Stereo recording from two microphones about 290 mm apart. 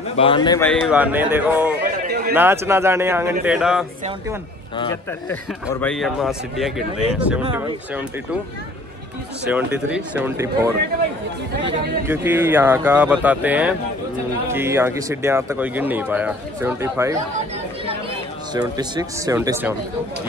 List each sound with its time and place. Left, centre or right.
0.1 s a man's voice: centre
2.0 s a sound: right
2.3 s a man's voice: centre
5.3 s a man's voice: centre
9.5 s a man's voice: centre
12.1 s speech: centre
18.5 s speech: centre